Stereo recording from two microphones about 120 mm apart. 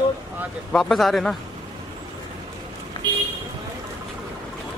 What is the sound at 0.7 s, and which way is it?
Speech, centre (ahead or behind).